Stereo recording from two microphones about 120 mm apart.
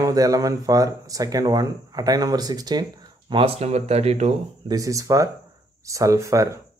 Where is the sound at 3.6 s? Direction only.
60° right (ahead or behind).